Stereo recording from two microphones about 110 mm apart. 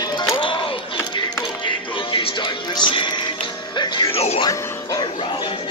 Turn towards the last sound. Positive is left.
turn(degrees=45)  # may be behind; listen again after turning